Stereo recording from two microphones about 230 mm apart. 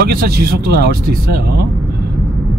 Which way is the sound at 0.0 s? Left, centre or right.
Right.